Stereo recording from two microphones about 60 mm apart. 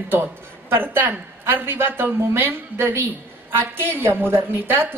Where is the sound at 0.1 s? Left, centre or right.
Right.